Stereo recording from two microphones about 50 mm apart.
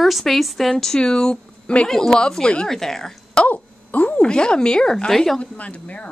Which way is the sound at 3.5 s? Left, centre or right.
Left.